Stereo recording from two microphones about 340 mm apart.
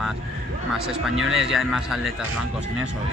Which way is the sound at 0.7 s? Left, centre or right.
Centre.